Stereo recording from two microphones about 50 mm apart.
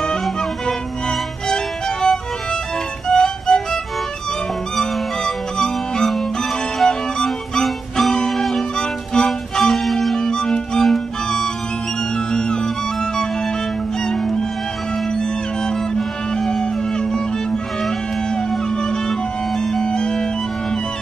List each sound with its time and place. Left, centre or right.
0.2 s music: centre
7.6 s music: centre
8.7 s music: centre
12.3 s music: centre